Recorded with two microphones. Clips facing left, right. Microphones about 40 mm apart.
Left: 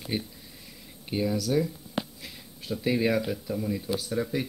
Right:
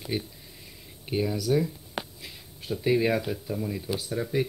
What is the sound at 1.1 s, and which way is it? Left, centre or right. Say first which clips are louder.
Speech: right 1 dB; centre.